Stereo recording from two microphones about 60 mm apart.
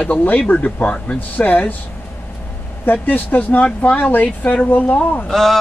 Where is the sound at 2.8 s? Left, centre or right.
Left.